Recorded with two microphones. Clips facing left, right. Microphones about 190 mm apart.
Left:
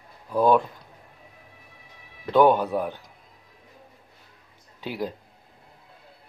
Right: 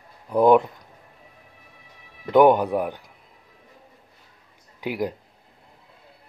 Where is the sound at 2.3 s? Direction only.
15° right (ahead or behind).